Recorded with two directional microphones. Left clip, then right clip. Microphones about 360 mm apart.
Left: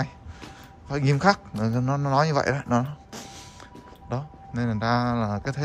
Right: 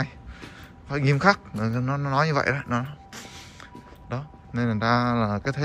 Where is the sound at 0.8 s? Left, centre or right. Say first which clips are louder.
Right 1 dB; centre.